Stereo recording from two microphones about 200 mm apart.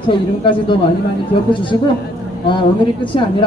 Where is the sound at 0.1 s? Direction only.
25° left (ahead or behind).